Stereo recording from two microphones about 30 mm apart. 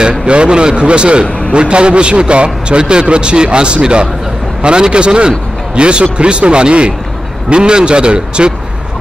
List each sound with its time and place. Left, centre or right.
0.3 s a man's voice: right